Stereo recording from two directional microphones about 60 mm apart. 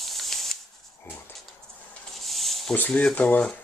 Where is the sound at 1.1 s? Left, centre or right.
Left.